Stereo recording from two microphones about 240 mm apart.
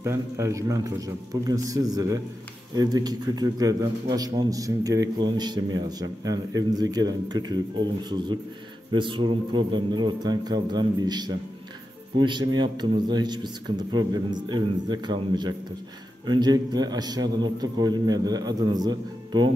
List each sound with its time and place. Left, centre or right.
0.0 s a man's voice: centre